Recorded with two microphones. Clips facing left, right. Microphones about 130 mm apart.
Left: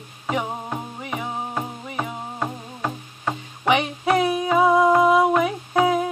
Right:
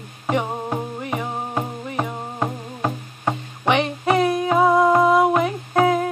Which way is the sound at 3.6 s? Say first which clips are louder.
Right 1 dB; 5° left (ahead or behind).